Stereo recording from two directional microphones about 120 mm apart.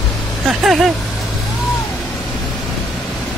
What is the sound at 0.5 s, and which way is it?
Speech, centre (ahead or behind).